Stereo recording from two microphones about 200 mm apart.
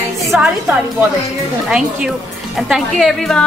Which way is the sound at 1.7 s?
5° right (ahead or behind).